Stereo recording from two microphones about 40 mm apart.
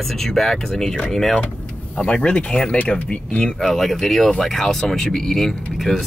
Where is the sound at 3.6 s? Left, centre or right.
Centre.